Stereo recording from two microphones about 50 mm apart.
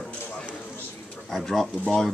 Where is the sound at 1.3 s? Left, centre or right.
Centre.